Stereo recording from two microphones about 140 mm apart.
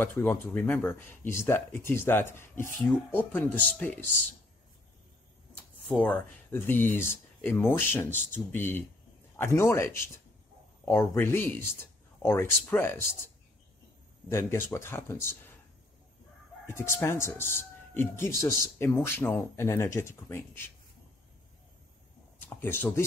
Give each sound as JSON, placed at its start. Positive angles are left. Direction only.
{"t": 0.0, "sound": "speech", "side_deg": 15}
{"t": 5.9, "sound": "speech", "side_deg": 10}
{"t": 14.3, "sound": "speech", "side_deg": 20}
{"t": 16.6, "sound": "speech", "side_deg": 20}
{"t": 22.4, "sound": "speech", "side_deg": 15}